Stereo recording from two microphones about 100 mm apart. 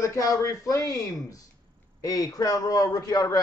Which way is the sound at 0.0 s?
30° left (ahead or behind).